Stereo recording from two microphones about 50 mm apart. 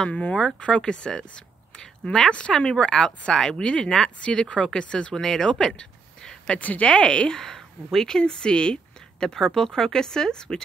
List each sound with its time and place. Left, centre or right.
0.1 s speech: left
5.8 s a sound: centre
6.6 s speech: left
6.9 s speech: centre
7.3 s speech: centre